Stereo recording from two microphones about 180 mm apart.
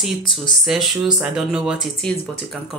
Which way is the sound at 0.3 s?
Centre (ahead or behind).